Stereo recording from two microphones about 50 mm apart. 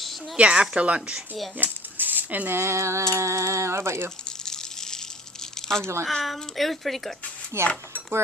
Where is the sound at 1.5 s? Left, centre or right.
Right.